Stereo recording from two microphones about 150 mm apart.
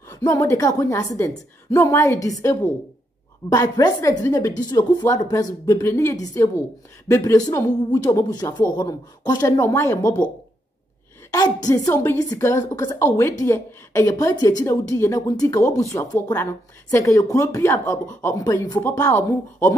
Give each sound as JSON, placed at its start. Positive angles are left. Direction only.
{"t": 0.1, "sound": "a woman's voice", "side_deg": 20}
{"t": 11.3, "sound": "a woman's voice", "side_deg": 25}